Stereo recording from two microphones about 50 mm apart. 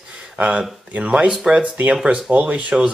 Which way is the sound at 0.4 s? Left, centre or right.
Right.